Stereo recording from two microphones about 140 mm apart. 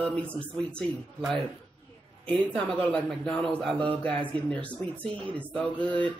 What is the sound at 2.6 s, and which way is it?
Speech, 10° left (ahead or behind).